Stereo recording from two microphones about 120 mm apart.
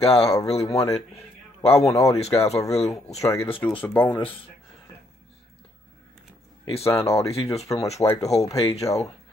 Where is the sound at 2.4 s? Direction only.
60° left (ahead or behind).